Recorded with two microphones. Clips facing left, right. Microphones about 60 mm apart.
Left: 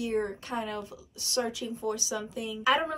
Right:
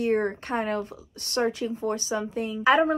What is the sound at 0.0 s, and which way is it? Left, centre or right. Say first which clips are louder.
Speech: right 6 dB; right.